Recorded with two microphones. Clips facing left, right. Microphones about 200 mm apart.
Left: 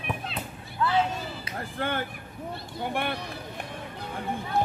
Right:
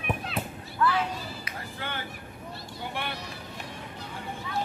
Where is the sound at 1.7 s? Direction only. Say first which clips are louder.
Left 8 dB; 50° left (ahead or behind).